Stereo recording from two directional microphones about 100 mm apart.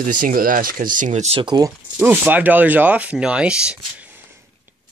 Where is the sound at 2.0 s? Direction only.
15° right (ahead or behind).